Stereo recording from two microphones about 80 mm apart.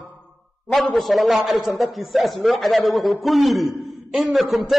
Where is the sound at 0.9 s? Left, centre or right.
Centre.